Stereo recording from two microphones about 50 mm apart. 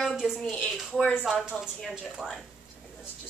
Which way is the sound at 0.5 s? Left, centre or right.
Left.